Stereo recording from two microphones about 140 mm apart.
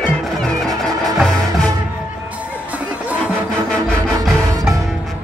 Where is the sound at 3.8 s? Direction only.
Centre (ahead or behind).